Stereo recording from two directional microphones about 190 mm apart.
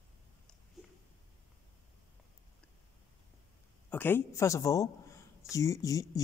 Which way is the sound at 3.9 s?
10° left (ahead or behind).